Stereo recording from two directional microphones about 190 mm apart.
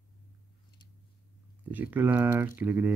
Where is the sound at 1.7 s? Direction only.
10° right (ahead or behind).